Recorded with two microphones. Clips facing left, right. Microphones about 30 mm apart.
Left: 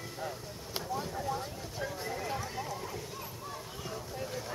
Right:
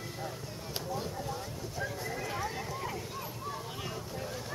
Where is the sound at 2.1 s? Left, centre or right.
Centre.